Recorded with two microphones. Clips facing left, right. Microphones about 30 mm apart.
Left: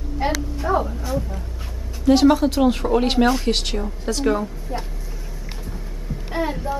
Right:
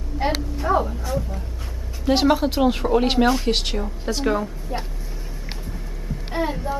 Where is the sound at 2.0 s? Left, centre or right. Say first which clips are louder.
Left 3 dB; centre.